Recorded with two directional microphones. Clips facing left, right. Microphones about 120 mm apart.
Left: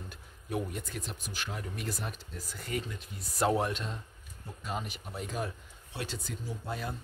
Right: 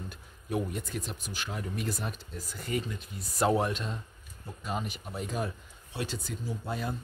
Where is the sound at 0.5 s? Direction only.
20° right (ahead or behind).